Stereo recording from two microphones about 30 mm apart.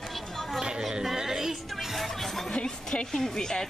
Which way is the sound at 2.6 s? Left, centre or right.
Left.